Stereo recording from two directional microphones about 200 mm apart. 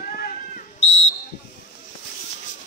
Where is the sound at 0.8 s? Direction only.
30° left (ahead or behind).